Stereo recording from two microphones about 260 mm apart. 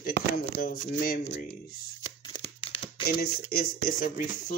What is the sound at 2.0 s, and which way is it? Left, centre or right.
Tearing, centre.